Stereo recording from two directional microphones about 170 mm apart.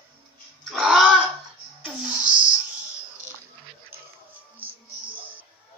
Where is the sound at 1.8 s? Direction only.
5° right (ahead or behind).